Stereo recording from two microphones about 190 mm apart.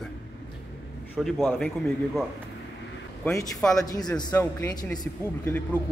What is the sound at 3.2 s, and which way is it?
Speech, 5° left (ahead or behind).